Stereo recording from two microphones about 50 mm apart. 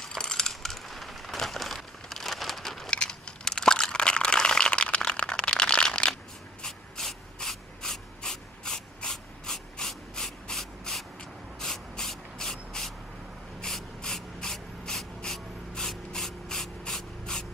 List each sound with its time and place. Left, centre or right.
0.0 s crushing: centre
2.9 s crunch: centre
6.6 s ratchet: centre
11.6 s rub: centre
13.6 s gasp: centre